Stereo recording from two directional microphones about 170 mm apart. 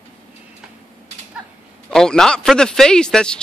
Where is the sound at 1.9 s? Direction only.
5° left (ahead or behind).